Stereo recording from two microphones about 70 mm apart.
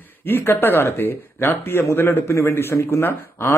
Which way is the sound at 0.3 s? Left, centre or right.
Left.